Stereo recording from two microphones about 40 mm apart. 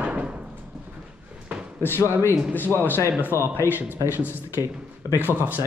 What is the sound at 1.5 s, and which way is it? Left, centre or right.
Slam, right.